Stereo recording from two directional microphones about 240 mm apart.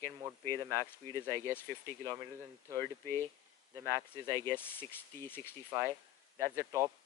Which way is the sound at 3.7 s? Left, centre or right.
Centre.